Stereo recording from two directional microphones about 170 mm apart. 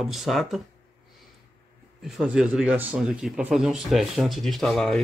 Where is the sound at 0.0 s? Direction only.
Centre (ahead or behind).